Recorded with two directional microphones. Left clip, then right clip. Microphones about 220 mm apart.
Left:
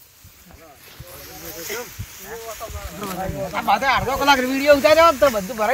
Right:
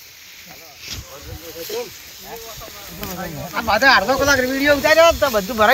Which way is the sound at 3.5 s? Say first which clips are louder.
Right 5 dB; 40° left (ahead or behind).